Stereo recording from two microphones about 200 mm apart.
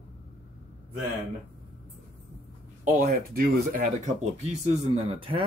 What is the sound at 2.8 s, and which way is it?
Speech, 45° right (ahead or behind).